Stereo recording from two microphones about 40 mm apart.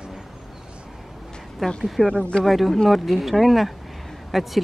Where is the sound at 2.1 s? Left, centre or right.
Left.